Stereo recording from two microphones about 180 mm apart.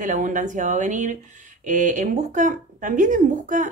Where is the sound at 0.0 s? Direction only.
45° right (ahead or behind).